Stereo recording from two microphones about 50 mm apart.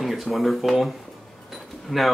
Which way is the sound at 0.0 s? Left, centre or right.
Centre.